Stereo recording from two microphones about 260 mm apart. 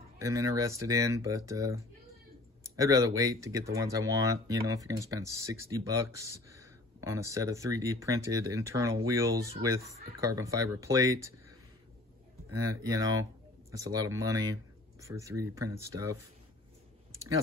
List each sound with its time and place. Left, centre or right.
0.2 s speech: centre
12.5 s speech: centre